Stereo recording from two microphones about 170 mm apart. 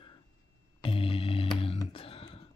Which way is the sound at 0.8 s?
30° left (ahead or behind).